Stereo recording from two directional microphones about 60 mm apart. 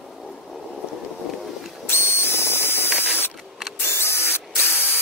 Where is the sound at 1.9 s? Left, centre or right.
Left.